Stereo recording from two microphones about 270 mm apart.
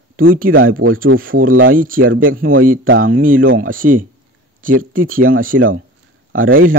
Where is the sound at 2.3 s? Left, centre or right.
Right.